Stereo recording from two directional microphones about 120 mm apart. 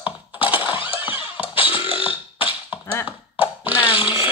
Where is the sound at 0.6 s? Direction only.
45° left (ahead or behind).